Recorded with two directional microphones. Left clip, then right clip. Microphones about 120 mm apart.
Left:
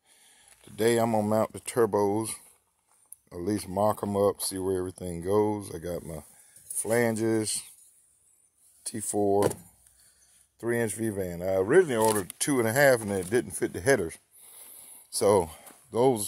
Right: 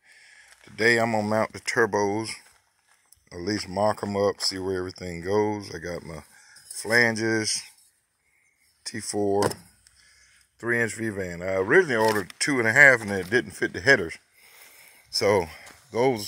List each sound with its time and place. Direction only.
0.0 s speech: 15° left (ahead or behind)
8.8 s speech: 5° left (ahead or behind)
10.6 s speech: 5° left (ahead or behind)
12.4 s speech: 15° left (ahead or behind)
13.0 s speech: centre (ahead or behind)
14.8 s a sound: 20° left (ahead or behind)
15.9 s speech: 20° left (ahead or behind)